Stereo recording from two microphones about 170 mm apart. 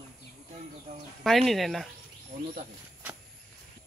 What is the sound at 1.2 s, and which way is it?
Speech, centre (ahead or behind).